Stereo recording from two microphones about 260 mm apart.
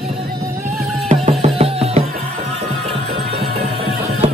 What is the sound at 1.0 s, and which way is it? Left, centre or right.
Music, right.